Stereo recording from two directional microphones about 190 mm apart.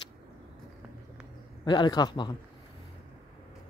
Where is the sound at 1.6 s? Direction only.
25° left (ahead or behind).